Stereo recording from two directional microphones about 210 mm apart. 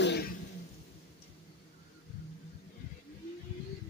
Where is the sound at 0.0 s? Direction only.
50° left (ahead or behind).